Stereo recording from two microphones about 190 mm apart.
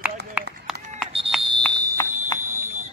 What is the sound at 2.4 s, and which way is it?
Fire alarm, 10° right (ahead or behind).